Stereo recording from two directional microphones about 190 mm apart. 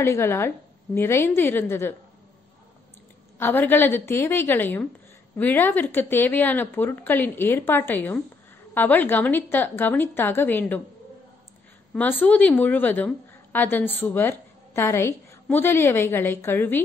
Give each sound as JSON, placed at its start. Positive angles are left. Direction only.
{"t": 0.0, "sound": "a woman's voice", "side_deg": 15}
{"t": 3.3, "sound": "a woman's voice", "side_deg": 10}
{"t": 11.9, "sound": "a woman's voice", "side_deg": 10}